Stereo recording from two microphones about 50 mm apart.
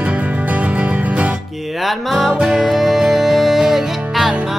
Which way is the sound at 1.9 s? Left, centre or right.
Centre.